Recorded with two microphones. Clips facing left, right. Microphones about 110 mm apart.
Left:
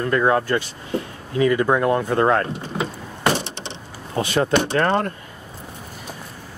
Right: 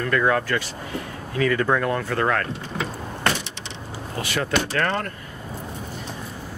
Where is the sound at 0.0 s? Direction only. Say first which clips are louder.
Left 3 dB; 25° left (ahead or behind).